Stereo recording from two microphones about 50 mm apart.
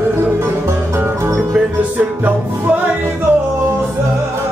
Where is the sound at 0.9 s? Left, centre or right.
Right.